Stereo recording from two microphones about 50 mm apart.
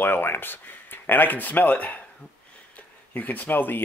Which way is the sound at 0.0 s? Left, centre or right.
Left.